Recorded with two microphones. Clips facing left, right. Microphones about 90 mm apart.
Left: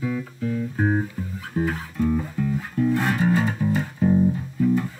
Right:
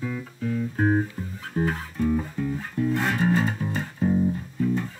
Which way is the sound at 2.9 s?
15° left (ahead or behind).